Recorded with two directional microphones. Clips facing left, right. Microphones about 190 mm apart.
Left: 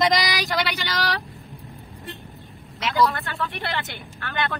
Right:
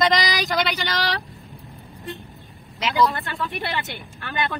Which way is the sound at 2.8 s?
Centre (ahead or behind).